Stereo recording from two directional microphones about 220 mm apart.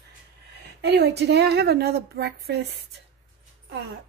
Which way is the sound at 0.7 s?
50° right (ahead or behind).